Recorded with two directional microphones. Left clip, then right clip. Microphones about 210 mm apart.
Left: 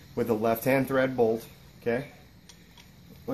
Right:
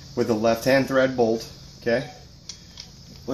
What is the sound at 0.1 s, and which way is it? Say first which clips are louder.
Speech: right 5 dB; 45° left (ahead or behind).